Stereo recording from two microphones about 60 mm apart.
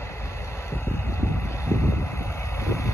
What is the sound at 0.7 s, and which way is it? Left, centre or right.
Vehicle, left.